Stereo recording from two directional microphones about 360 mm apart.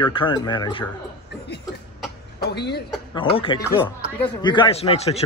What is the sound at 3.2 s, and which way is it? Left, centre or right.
A man's voice, centre.